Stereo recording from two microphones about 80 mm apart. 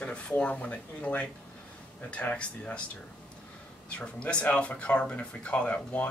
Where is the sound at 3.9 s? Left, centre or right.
Centre.